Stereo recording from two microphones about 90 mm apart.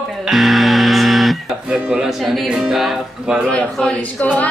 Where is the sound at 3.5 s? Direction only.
10° left (ahead or behind).